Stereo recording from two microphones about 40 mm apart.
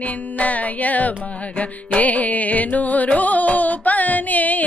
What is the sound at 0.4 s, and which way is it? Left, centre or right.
Music, left.